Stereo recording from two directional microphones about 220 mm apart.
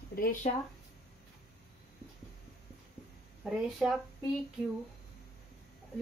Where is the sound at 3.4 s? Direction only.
Centre (ahead or behind).